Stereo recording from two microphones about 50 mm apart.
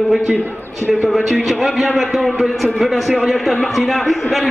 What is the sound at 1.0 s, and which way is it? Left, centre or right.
A man's voice, centre.